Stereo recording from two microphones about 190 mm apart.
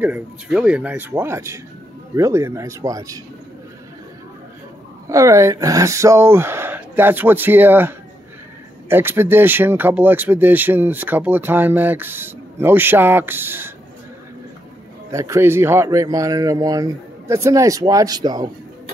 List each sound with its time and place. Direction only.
0.0 s speech: 5° right (ahead or behind)
5.0 s speech: 15° right (ahead or behind)
15.0 s speech: 15° right (ahead or behind)